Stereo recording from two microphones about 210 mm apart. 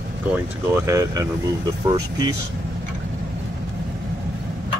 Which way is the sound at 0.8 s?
15° right (ahead or behind).